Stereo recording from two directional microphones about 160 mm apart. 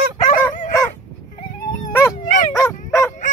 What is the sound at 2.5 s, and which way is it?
Dog, 15° left (ahead or behind).